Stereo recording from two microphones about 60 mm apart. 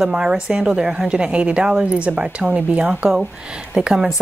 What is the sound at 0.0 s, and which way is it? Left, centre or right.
Speech, centre.